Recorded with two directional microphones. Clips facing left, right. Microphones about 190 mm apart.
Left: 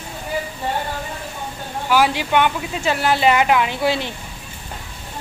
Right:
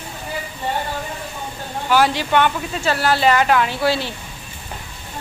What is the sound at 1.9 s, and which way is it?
Speech, 10° left (ahead or behind).